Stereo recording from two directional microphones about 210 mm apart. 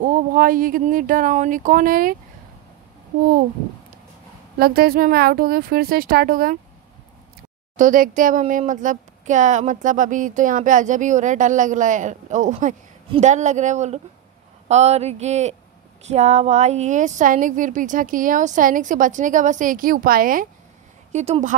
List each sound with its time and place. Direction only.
0.0 s speech: 40° right (ahead or behind)
4.6 s speech: 45° right (ahead or behind)
7.7 s speech: 40° right (ahead or behind)